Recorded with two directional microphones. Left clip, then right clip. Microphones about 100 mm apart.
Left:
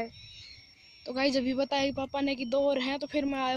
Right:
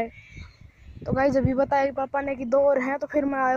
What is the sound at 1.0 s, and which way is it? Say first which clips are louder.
Speech: right 6 dB; 60° left (ahead or behind).